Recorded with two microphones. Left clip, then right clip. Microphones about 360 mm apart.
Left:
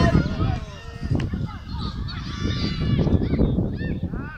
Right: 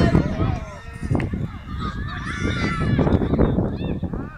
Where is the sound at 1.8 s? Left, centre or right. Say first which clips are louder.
Right 7 dB; right.